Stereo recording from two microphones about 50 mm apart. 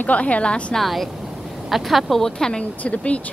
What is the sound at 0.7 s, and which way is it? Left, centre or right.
Speech, centre.